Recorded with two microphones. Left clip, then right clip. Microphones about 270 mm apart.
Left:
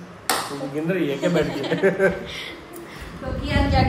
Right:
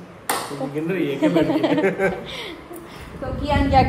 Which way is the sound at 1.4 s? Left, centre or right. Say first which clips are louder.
Right 6 dB; right.